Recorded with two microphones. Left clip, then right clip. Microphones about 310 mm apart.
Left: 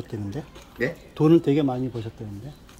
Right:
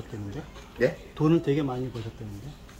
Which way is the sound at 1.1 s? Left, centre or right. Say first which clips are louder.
Left 5 dB; left.